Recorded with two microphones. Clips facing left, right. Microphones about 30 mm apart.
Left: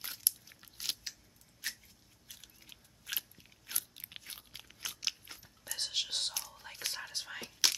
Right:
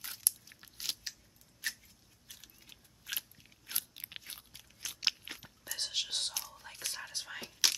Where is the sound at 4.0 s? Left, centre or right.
Centre.